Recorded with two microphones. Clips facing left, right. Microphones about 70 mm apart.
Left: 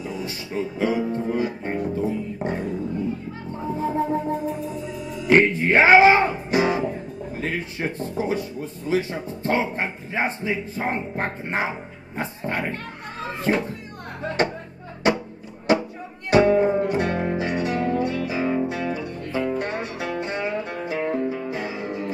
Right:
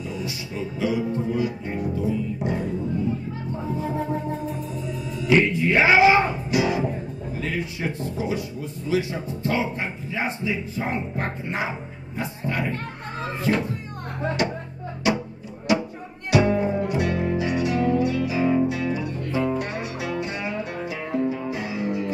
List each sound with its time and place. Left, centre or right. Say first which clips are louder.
0.2 s music: left 2 dB; left
3.7 s music: left 4 dB; left
4.8 s music: right 1 dB; centre
5.3 s music: left 2 dB; left
7.3 s speech: even; left
15.0 s music: left 2 dB; left